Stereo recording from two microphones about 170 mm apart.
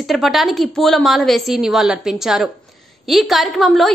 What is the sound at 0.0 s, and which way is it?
A woman's voice, centre (ahead or behind).